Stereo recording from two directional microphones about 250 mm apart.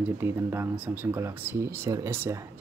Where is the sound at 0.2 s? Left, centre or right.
Centre.